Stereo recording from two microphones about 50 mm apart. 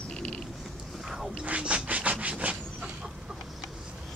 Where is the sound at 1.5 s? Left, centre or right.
Right.